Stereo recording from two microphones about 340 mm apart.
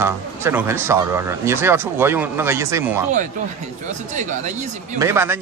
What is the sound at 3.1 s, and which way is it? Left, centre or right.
Speech, right.